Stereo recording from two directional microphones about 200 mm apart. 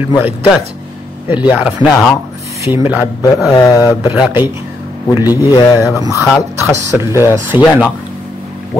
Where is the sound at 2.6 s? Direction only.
10° right (ahead or behind).